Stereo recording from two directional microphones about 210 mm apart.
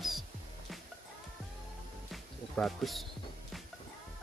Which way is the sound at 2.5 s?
Centre (ahead or behind).